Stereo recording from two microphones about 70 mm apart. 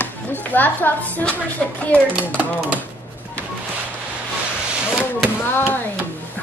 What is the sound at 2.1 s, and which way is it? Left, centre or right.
Speech, centre.